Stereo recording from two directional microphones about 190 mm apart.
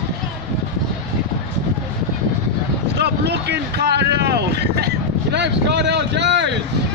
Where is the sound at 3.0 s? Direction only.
60° right (ahead or behind).